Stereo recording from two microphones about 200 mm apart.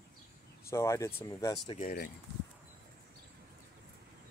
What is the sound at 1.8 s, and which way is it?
Speech, 45° left (ahead or behind).